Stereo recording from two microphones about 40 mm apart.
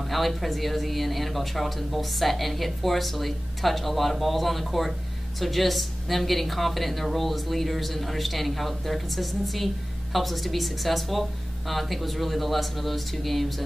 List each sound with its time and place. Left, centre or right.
0.0 s speech: centre